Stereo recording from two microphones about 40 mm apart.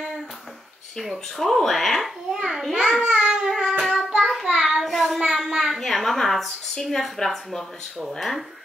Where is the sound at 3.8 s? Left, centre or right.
Centre.